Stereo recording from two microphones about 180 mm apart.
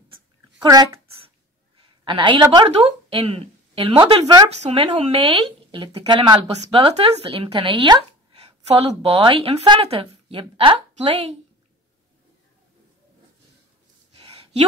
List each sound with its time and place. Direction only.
0.6 s a sound: 25° right (ahead or behind)
2.0 s a woman's voice: 25° right (ahead or behind)
4.5 s speech: 35° right (ahead or behind)